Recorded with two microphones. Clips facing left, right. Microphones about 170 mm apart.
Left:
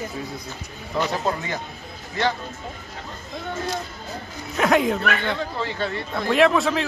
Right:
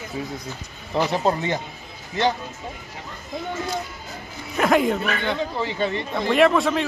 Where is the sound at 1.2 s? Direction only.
25° right (ahead or behind).